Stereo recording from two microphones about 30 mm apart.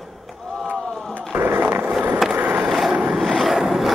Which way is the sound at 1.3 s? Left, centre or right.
Right.